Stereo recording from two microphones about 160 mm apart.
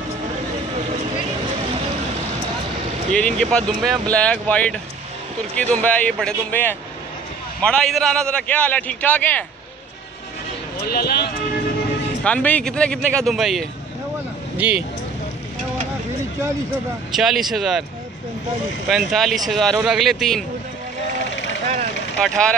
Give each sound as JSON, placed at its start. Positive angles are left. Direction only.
{"t": 3.1, "sound": "speech", "side_deg": 5}
{"t": 10.8, "sound": "speech", "side_deg": 75}
{"t": 12.2, "sound": "speech", "side_deg": 10}
{"t": 17.1, "sound": "speech", "side_deg": 0}
{"t": 18.9, "sound": "speech", "side_deg": 0}
{"t": 22.2, "sound": "speech", "side_deg": 5}